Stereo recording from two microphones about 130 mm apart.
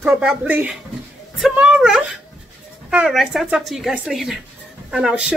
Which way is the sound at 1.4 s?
10° right (ahead or behind).